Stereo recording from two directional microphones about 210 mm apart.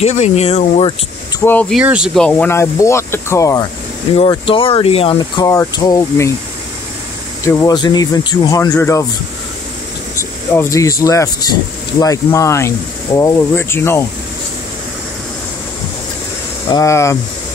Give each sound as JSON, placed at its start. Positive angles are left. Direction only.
{"t": 0.0, "sound": "speech", "side_deg": 30}
{"t": 1.4, "sound": "speech", "side_deg": 10}
{"t": 1.8, "sound": "speech", "side_deg": -5}
{"t": 4.2, "sound": "speech", "side_deg": 25}
{"t": 7.4, "sound": "speech", "side_deg": 20}
{"t": 10.1, "sound": "speech", "side_deg": 10}
{"t": 16.6, "sound": "speech", "side_deg": 15}